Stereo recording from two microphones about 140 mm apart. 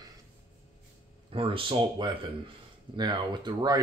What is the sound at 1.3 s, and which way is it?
Speech, 40° right (ahead or behind).